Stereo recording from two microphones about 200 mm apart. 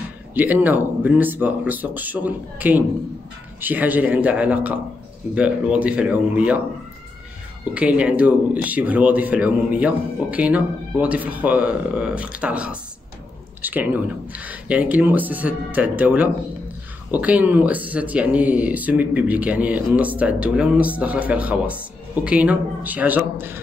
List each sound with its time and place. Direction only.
0.3 s speech: 10° right (ahead or behind)
7.7 s speech: 5° right (ahead or behind)